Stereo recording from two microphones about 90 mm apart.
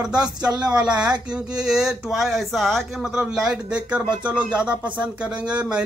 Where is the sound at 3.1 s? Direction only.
10° right (ahead or behind).